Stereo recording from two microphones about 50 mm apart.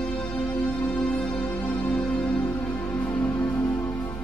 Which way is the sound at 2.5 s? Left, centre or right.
Left.